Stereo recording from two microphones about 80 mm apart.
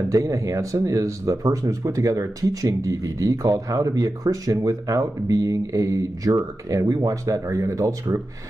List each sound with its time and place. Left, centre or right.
0.1 s speech: right